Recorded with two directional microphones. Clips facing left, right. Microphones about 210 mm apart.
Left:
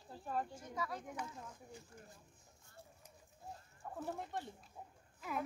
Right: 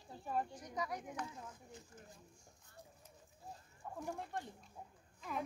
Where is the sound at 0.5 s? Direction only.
15° right (ahead or behind).